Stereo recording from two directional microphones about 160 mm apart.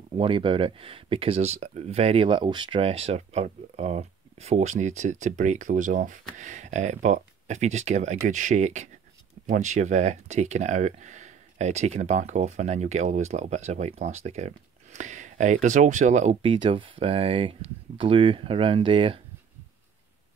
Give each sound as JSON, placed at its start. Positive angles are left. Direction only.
{"t": 0.2, "sound": "speech", "side_deg": -35}
{"t": 16.4, "sound": "speech", "side_deg": -30}